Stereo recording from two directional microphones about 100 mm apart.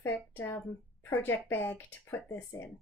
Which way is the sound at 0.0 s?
20° left (ahead or behind).